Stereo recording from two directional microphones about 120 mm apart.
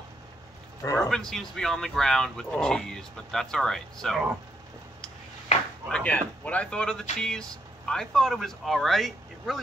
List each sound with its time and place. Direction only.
1.0 s speech: 5° left (ahead or behind)
5.9 s speech: 10° left (ahead or behind)